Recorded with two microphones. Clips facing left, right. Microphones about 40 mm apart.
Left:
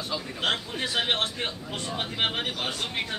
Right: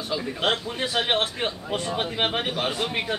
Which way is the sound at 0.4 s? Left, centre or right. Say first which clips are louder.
Right 2 dB; centre.